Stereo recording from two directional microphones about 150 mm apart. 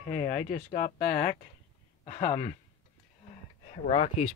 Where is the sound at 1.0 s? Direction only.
10° left (ahead or behind).